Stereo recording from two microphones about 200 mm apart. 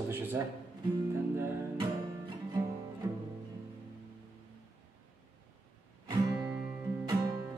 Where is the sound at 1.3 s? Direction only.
10° right (ahead or behind).